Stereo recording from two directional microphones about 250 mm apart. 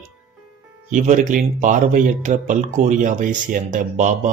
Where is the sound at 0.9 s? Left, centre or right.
Right.